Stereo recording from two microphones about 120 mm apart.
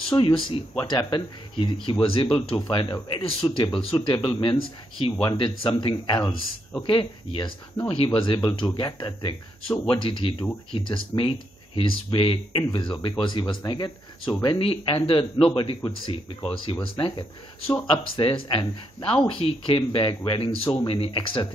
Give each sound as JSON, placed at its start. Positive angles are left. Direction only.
{"t": 0.1, "sound": "speech", "side_deg": 40}
{"t": 16.8, "sound": "speech", "side_deg": 50}